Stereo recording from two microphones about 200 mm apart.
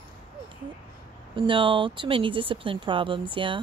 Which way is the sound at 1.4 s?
25° right (ahead or behind).